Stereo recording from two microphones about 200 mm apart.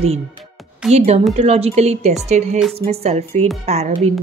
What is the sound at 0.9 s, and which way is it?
Speech, 35° right (ahead or behind).